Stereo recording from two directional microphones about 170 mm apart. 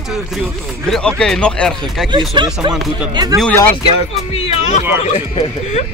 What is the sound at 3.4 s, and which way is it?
Speech, 10° left (ahead or behind).